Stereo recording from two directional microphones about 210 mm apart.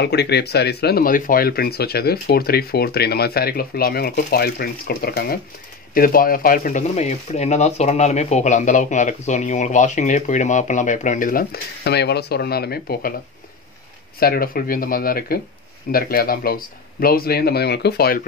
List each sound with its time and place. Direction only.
0.0 s speech: 50° left (ahead or behind)
14.2 s speech: 45° left (ahead or behind)